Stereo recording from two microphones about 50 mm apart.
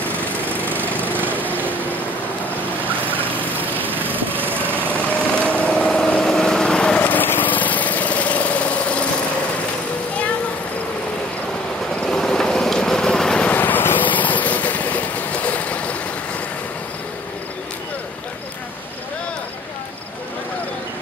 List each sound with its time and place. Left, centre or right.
0.0 s lawn mower: right
3.3 s lawn mower: right
4.9 s vehicle: left
7.0 s engine: left
11.9 s vehicle: left
12.2 s vehicle: centre
13.5 s vehicle: left